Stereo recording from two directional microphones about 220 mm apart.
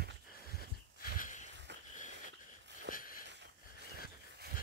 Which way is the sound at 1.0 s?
40° left (ahead or behind).